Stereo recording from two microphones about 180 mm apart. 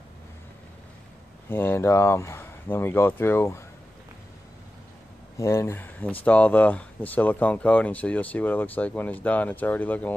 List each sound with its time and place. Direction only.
1.5 s speech: 10° left (ahead or behind)
5.4 s speech: 15° left (ahead or behind)